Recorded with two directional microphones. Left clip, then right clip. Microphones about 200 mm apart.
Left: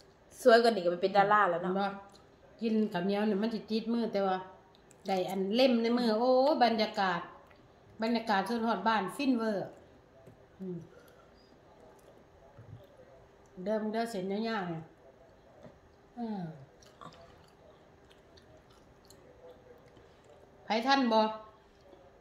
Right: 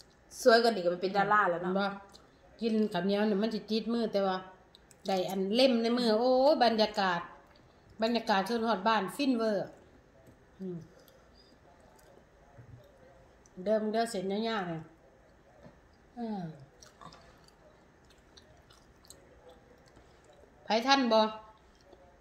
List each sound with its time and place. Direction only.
0.5 s a woman's voice: 5° left (ahead or behind)
2.6 s a woman's voice: 15° right (ahead or behind)
13.7 s a woman's voice: 20° right (ahead or behind)
16.2 s a sound: 20° right (ahead or behind)
20.6 s a woman's voice: 15° right (ahead or behind)